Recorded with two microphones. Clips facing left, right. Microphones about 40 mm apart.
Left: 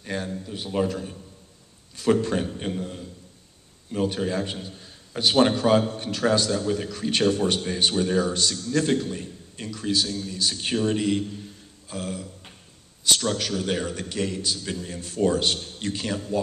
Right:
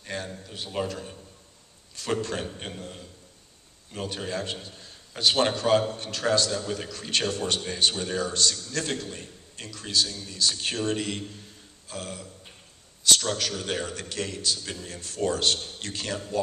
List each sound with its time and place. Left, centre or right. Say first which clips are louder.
0.0 s a man's voice: left 4 dB; centre